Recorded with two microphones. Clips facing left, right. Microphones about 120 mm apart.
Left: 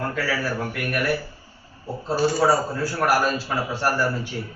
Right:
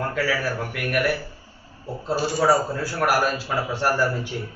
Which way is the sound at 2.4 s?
15° right (ahead or behind).